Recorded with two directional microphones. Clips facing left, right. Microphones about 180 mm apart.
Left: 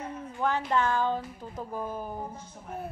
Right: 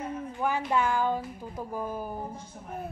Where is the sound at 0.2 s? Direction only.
10° right (ahead or behind).